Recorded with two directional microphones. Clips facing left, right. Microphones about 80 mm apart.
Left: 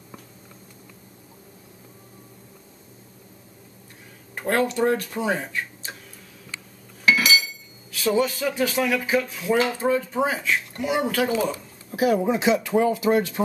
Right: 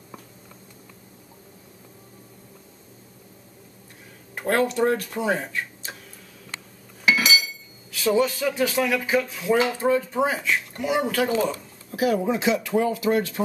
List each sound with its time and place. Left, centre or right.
4.4 s speech: centre
7.1 s cutlery: centre
7.9 s speech: centre
11.5 s speech: left